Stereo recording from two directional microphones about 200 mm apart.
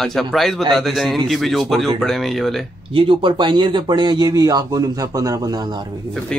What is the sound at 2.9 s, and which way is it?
Speech, 25° right (ahead or behind).